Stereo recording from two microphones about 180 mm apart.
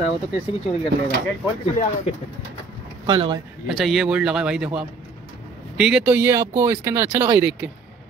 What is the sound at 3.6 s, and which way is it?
Speech, centre (ahead or behind).